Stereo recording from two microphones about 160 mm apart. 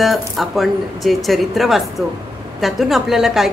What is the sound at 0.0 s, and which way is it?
Speech, centre (ahead or behind).